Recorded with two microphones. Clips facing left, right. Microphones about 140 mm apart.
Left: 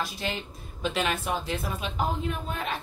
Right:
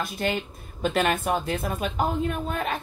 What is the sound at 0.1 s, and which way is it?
A woman's voice, 55° right (ahead or behind).